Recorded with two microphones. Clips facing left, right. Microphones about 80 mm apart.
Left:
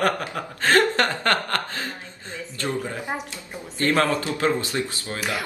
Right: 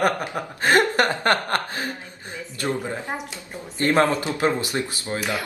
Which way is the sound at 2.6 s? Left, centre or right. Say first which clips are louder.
Right 2 dB; centre.